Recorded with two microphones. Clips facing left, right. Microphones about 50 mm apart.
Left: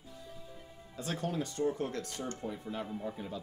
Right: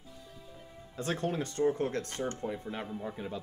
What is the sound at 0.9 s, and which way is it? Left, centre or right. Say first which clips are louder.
Speech: right 3 dB; right.